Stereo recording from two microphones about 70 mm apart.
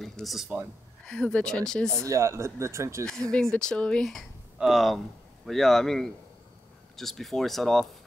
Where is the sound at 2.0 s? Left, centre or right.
Right.